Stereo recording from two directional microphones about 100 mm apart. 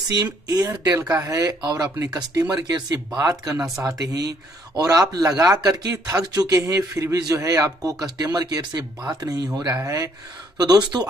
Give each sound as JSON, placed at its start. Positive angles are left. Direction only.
{"t": 0.2, "sound": "speech", "side_deg": -35}
{"t": 10.6, "sound": "speech", "side_deg": -45}